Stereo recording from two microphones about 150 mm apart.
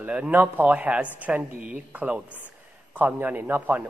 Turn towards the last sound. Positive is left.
turn(degrees=-10)  # may be behind; listen again after turning